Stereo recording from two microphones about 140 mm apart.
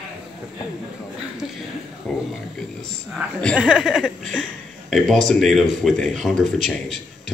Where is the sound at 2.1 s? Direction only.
5° left (ahead or behind).